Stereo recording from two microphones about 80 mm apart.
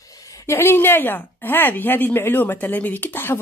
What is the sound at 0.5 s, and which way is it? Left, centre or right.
A woman's voice, left.